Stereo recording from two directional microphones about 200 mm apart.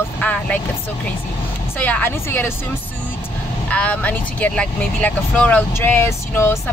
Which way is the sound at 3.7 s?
5° left (ahead or behind).